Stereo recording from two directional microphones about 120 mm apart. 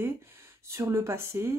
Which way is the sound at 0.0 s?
20° right (ahead or behind).